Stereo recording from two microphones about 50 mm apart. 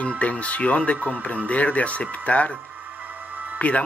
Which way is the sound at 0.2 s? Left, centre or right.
Left.